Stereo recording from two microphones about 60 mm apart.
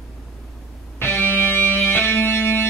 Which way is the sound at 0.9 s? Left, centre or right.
Left.